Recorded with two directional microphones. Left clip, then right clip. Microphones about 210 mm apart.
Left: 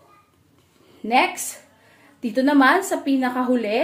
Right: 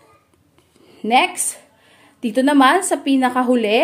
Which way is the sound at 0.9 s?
30° right (ahead or behind).